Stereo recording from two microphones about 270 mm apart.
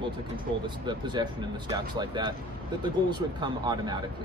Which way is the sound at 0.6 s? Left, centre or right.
Centre.